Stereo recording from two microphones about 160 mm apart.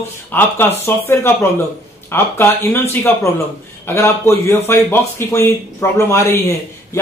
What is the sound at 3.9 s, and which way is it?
A man's voice, 15° left (ahead or behind).